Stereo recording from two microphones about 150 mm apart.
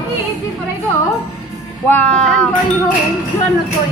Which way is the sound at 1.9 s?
10° left (ahead or behind).